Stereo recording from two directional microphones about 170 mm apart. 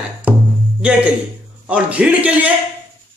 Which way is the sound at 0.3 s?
10° right (ahead or behind).